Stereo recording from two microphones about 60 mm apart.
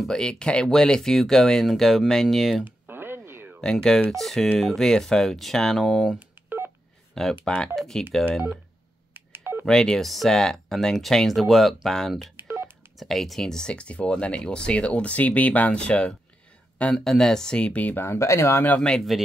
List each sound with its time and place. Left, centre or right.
0.1 s speech: centre
2.6 s a sound: right
3.6 s speech: centre
6.1 s telephone dialing: right
7.2 s speech: centre
9.1 s telephone dialing: right
9.7 s speech: centre
12.4 s telephone dialing: right
12.9 s speech: centre
16.9 s speech: centre; by 17.9 s left
17.9 s speech: left
18.8 s speech: centre